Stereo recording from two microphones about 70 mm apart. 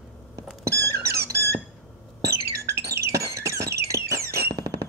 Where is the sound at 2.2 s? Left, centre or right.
Right.